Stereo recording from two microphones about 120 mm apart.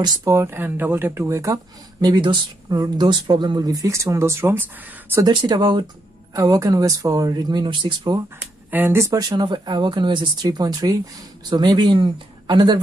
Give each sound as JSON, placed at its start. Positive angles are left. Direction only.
{"t": 0.0, "sound": "speech", "side_deg": -30}
{"t": 5.5, "sound": "speech", "side_deg": -40}
{"t": 8.4, "sound": "speech", "side_deg": -15}
{"t": 9.4, "sound": "speech", "side_deg": -40}